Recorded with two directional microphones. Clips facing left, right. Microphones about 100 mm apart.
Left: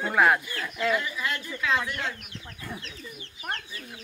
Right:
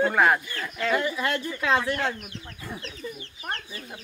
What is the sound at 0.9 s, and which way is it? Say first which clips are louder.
Speech: right 4 dB; 30° right (ahead or behind).